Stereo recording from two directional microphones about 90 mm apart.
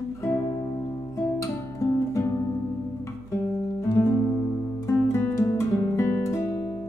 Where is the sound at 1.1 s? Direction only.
35° left (ahead or behind).